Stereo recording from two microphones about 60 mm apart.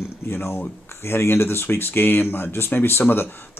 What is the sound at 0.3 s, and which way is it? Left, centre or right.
Speech, left.